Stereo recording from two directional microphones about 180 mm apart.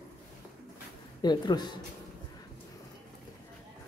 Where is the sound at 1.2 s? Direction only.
25° left (ahead or behind).